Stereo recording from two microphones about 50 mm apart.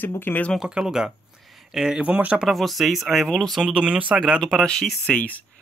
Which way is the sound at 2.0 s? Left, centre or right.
Right.